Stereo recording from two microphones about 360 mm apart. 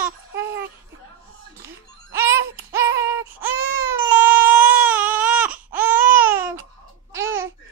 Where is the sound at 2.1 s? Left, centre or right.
Centre.